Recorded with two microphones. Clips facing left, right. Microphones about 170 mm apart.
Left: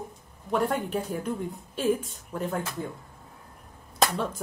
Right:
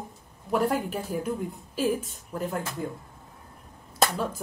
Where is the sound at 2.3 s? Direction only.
5° right (ahead or behind).